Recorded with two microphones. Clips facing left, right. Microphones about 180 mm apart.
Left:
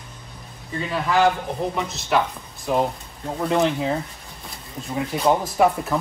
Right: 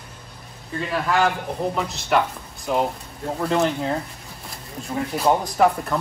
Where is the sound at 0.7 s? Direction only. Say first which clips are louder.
Left 1 dB; centre (ahead or behind).